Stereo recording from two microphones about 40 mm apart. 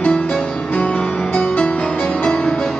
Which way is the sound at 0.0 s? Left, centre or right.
Left.